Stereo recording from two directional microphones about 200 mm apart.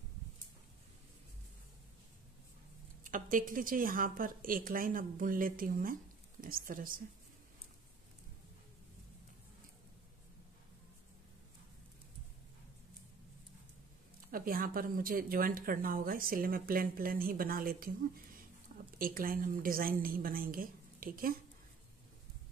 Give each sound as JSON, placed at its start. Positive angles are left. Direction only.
{"t": 3.0, "sound": "speech", "side_deg": -40}
{"t": 14.3, "sound": "speech", "side_deg": -45}